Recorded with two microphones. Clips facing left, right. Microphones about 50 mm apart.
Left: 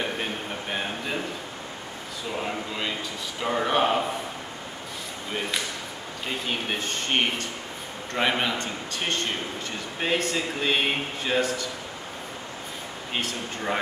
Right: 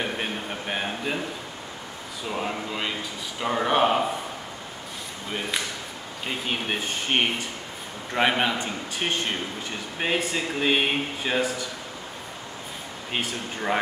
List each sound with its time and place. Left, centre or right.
0.0 s a sound: centre
2.3 s speech: centre
6.2 s speech: centre
13.1 s speech: centre